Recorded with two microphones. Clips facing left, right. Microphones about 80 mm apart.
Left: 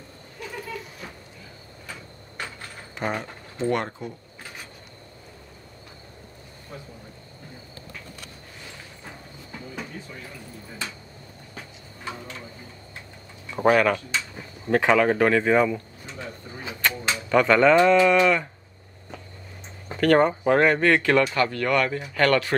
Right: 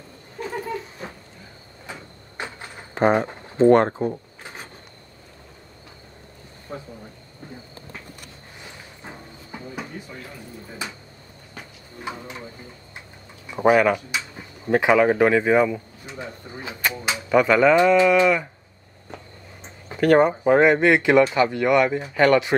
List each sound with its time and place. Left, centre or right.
0.4 s a sound: right
1.9 s sliding door: right
2.9 s speech: right
4.4 s wood: right
6.7 s speech: right
8.6 s a sound: centre
11.5 s a sound: centre
13.5 s speech: centre
19.9 s speech: centre